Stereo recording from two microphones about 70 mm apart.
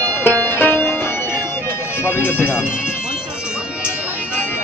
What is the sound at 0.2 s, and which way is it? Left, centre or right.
Music, left.